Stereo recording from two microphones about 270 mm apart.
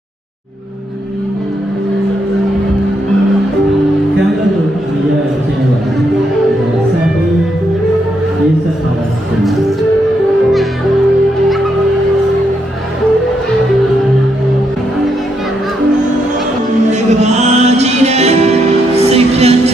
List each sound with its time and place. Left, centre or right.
16.9 s music: right